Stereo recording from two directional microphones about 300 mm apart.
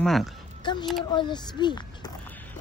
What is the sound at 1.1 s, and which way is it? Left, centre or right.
Speech, centre.